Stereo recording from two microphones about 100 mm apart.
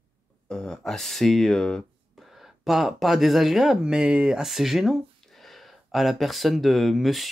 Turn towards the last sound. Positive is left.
turn(degrees=0)  # may be behind; listen again after turning